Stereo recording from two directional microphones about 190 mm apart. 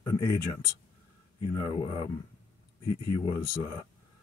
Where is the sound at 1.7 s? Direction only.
25° left (ahead or behind).